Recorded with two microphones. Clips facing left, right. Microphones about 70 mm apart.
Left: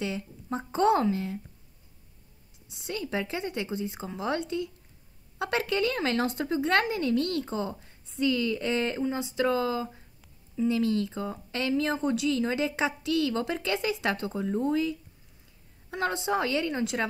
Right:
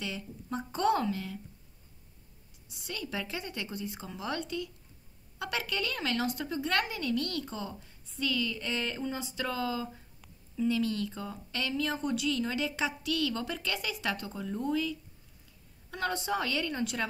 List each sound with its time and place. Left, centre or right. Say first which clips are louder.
0.0 s speech: left 6 dB; left
2.7 s speech: left 6 dB; left
5.7 s speech: left 6 dB; left